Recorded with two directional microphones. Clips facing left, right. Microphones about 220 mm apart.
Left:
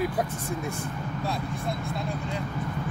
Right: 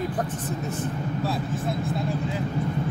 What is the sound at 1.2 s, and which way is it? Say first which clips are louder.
Speech: right 2 dB; centre (ahead or behind).